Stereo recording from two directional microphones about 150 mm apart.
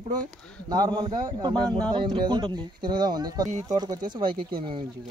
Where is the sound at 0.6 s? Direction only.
25° right (ahead or behind).